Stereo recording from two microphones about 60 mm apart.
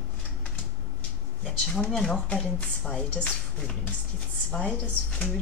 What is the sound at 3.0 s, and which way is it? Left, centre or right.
Speech, centre.